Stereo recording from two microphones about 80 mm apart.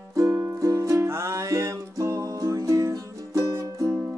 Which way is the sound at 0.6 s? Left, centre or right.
Right.